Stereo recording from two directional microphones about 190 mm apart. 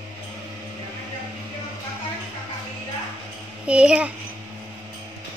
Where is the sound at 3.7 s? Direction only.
5° right (ahead or behind).